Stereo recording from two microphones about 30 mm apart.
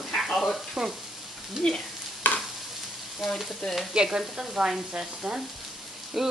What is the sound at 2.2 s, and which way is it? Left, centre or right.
Stir, left.